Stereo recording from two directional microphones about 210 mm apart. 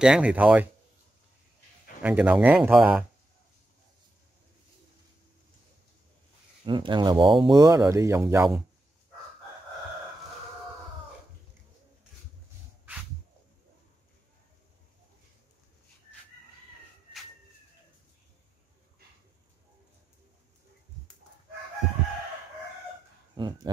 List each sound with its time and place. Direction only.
0.0 s speech: 5° right (ahead or behind)
2.0 s speech: 5° right (ahead or behind)
6.6 s speech: 20° right (ahead or behind)
23.3 s speech: 20° right (ahead or behind)